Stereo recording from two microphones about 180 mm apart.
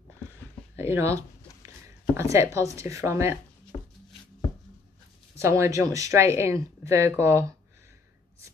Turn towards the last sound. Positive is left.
turn(degrees=-15)  # may be behind; listen again after turning